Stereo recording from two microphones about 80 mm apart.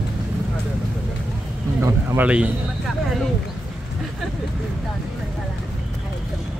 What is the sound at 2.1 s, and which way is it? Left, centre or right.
Speech, centre.